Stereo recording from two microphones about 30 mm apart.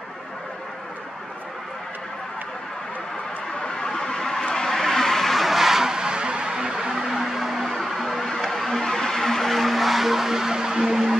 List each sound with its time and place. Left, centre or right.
3.6 s a sound: left
4.5 s vehicle: left; by 5.6 s centre
5.6 s vehicle: centre
5.9 s music: right
7.1 s a sound: centre
8.5 s vehicle: centre